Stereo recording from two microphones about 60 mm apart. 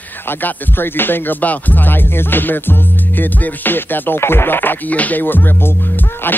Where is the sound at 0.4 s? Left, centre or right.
Left.